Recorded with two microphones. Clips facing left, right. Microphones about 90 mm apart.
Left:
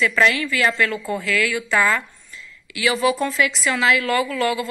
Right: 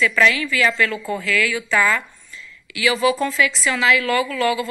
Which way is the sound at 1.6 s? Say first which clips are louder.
Even; 30° left (ahead or behind).